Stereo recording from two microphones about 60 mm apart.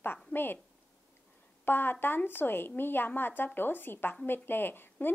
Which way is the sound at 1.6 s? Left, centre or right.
Left.